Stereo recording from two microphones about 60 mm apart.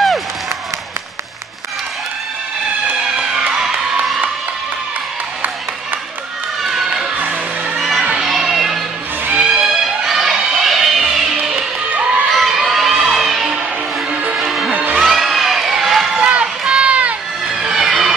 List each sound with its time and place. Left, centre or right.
6.6 s crowd: centre
7.7 s children playing: centre
8.2 s a sound: centre
9.4 s music: centre
11.9 s crowd: centre
12.3 s children shouting: centre
14.1 s music: right
14.4 s music: centre
15.0 s run: centre
16.2 s run: centre
17.6 s a sound: centre